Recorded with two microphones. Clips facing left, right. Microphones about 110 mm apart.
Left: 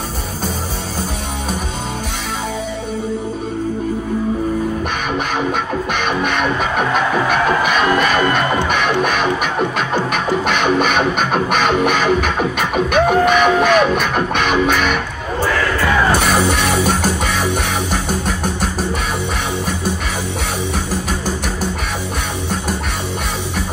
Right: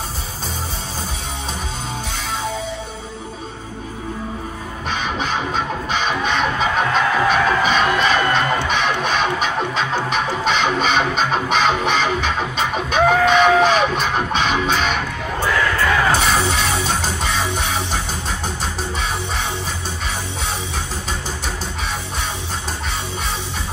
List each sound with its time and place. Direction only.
5.5 s music: 55° left (ahead or behind)
16.1 s music: 55° left (ahead or behind)